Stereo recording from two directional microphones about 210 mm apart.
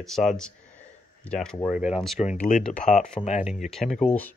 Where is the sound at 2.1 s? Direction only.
35° left (ahead or behind).